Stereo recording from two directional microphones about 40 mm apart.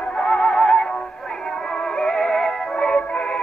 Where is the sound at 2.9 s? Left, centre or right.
Left.